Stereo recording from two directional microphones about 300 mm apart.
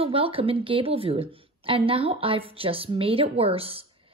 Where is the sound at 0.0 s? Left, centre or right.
Centre.